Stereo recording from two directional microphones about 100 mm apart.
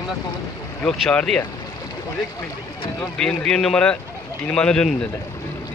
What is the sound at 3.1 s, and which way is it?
A man's voice, 10° left (ahead or behind).